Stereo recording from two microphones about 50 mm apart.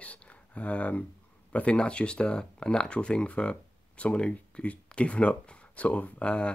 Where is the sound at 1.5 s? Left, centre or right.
Left.